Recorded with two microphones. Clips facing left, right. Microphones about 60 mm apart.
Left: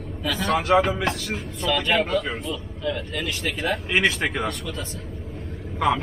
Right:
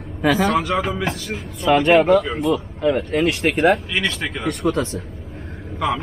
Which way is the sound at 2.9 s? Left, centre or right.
Right.